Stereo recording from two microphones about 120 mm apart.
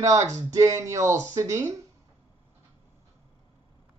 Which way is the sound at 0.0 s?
25° right (ahead or behind).